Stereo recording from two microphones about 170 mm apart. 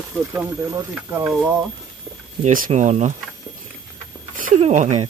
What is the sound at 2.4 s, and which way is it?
Speech, 45° right (ahead or behind).